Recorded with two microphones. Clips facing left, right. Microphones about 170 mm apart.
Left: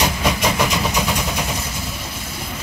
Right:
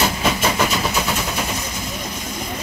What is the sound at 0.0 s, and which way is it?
Vehicle, 10° left (ahead or behind).